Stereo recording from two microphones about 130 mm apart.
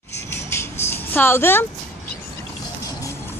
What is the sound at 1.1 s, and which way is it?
Speech, 15° left (ahead or behind).